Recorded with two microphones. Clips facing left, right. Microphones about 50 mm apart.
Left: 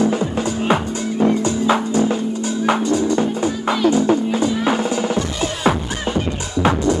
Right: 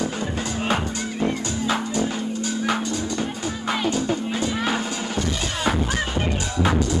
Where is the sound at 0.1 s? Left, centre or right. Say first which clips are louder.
Left 7 dB; left.